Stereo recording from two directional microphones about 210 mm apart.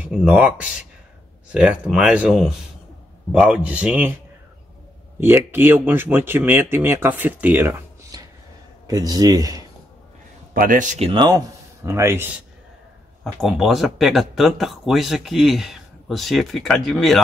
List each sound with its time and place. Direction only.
0.0 s speech: 5° right (ahead or behind)
5.2 s speech: 10° right (ahead or behind)
10.5 s speech: 40° right (ahead or behind); by 12.4 s 10° right (ahead or behind)
13.2 s speech: centre (ahead or behind)